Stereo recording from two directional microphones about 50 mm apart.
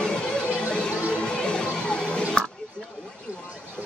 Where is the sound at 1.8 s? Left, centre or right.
Centre.